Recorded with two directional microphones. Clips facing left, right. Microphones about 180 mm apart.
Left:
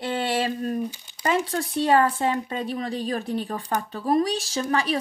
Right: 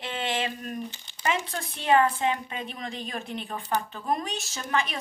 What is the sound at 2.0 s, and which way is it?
A woman's voice, 40° left (ahead or behind).